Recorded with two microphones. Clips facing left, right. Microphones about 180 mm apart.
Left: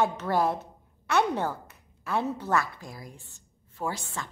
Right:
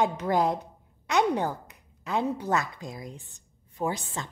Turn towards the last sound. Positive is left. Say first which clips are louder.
# right 3 dB
turn(degrees=-20)  # may be behind; listen again after turning